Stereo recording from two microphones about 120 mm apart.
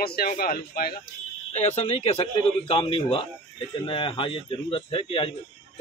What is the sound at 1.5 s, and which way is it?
A man's voice, 60° left (ahead or behind).